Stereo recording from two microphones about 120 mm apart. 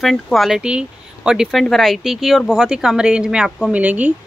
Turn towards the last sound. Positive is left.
turn(degrees=-10)  # may be behind; listen again after turning